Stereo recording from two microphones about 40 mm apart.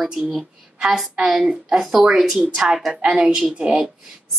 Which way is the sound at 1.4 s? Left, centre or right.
Right.